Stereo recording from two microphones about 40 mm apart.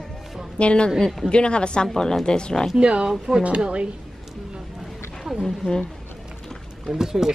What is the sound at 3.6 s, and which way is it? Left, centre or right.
Speech, right.